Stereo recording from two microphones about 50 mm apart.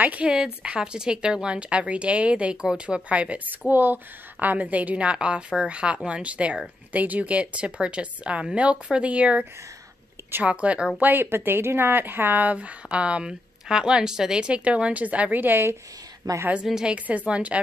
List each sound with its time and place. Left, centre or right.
0.0 s a woman's voice: right
0.3 s speech: centre
2.6 s speech: centre
3.1 s speech: right
10.4 s speech: right
11.0 s a woman's voice: right
11.2 s speech: right
15.4 s speech: right
16.8 s speech: right